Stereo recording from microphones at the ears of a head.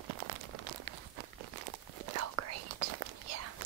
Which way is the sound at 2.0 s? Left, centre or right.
Right.